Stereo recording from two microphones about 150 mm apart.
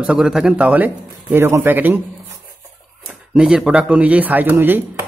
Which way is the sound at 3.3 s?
5° right (ahead or behind).